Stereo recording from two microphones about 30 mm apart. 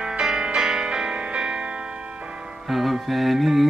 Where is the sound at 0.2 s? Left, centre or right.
Centre; by 1.7 s right.